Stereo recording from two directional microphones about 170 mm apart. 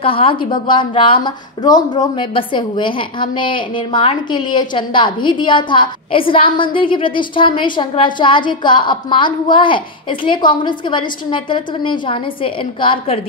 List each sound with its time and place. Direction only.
0.0 s a woman's voice: 30° left (ahead or behind)